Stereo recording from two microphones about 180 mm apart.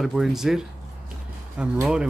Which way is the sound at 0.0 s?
Centre (ahead or behind).